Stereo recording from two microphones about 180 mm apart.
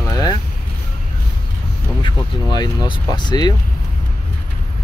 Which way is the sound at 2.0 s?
25° left (ahead or behind).